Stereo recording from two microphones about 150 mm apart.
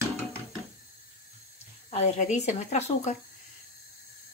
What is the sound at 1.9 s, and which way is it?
Speech, 50° left (ahead or behind).